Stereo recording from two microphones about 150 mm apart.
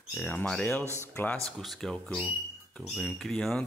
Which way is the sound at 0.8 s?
15° right (ahead or behind).